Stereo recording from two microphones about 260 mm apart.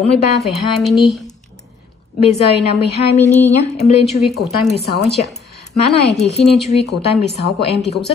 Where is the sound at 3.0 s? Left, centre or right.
Left.